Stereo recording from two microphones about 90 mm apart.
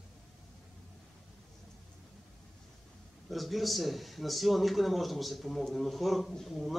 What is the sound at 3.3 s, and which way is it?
Speech, centre (ahead or behind).